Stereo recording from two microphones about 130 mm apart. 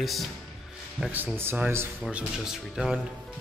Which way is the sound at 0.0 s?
Centre (ahead or behind).